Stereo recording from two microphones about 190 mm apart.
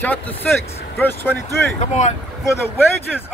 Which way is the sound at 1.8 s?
40° left (ahead or behind).